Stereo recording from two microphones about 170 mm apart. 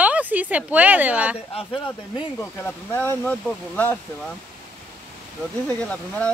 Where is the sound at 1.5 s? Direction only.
35° left (ahead or behind).